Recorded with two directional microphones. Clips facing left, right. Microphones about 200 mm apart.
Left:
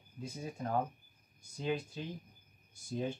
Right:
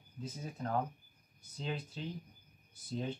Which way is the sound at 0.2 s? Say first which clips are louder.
Left 1 dB; 10° left (ahead or behind).